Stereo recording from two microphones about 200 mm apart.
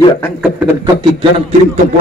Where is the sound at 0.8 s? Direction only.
25° right (ahead or behind).